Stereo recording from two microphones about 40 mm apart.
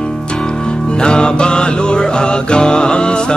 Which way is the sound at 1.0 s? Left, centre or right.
Left.